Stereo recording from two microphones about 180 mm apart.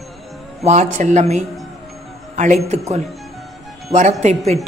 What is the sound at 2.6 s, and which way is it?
Speech, 40° right (ahead or behind).